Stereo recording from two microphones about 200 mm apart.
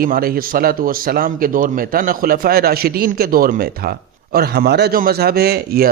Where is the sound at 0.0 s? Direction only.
45° right (ahead or behind).